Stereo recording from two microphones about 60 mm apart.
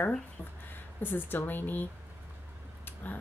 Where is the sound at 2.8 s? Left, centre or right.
Left.